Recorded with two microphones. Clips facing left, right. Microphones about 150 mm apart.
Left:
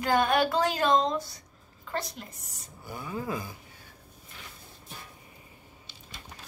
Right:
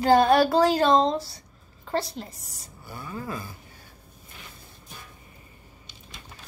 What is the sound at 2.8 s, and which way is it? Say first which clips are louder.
Speech: left 1 dB; 15° left (ahead or behind).